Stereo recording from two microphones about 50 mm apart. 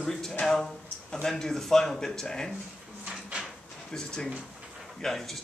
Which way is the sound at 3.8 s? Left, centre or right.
Centre.